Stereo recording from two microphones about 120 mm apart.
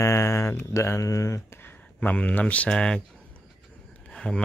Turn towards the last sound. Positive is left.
turn(degrees=5)  # may be behind; listen again after turning